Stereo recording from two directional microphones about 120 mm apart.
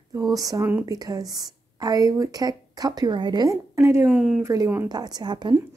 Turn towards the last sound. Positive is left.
turn(degrees=-35)  # may be behind; listen again after turning